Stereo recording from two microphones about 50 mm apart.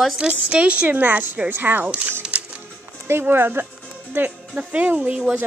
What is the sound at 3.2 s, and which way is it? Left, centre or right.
Speech, right.